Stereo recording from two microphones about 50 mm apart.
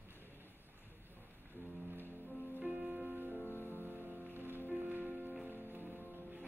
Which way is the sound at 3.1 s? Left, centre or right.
Right.